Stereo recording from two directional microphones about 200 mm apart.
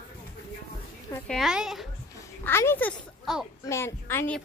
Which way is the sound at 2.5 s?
10° left (ahead or behind).